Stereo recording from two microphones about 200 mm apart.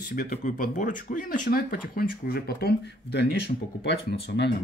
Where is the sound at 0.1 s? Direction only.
40° left (ahead or behind); by 4.5 s 55° left (ahead or behind).